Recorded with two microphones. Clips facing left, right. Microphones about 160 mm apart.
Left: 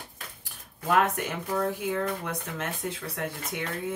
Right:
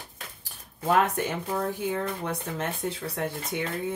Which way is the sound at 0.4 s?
30° right (ahead or behind).